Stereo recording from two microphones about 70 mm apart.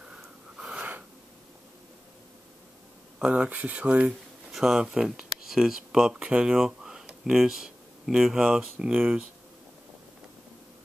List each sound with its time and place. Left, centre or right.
0.1 s wheeze: centre
3.2 s speech: centre
4.5 s speech: centre